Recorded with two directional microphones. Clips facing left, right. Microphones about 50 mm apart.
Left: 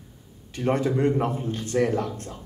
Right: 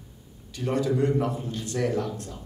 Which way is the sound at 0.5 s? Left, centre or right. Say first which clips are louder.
Left 2 dB; left.